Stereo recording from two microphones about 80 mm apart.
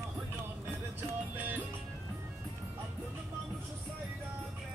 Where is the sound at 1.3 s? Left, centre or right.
Right.